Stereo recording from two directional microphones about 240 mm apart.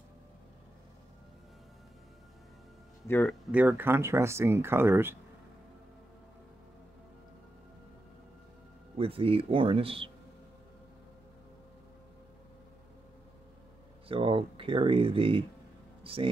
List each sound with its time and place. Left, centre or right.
3.1 s speech: centre
3.5 s speech: centre
8.9 s speech: right
14.0 s speech: right